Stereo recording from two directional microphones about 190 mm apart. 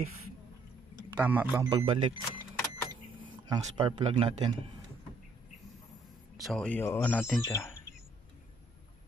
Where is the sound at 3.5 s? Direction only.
20° right (ahead or behind).